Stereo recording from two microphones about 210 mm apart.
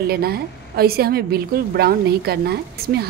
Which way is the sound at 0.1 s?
45° right (ahead or behind).